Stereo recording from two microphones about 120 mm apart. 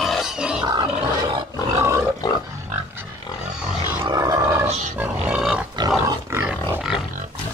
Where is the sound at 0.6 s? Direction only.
35° right (ahead or behind).